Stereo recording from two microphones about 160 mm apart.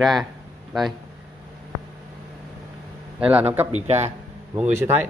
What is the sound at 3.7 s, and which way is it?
Speech, 45° right (ahead or behind).